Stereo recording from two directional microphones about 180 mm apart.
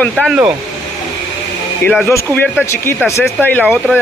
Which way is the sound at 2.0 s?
15° left (ahead or behind).